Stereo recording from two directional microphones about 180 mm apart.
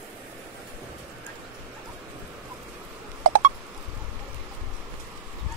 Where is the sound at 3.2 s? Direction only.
45° right (ahead or behind).